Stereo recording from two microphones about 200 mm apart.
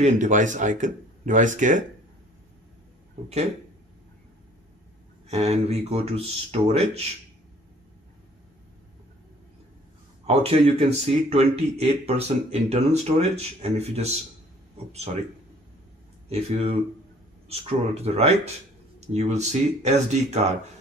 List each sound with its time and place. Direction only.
0.0 s speech: 40° right (ahead or behind)
5.3 s speech: 35° right (ahead or behind)
10.2 s speech: 30° right (ahead or behind)
16.3 s speech: 30° right (ahead or behind)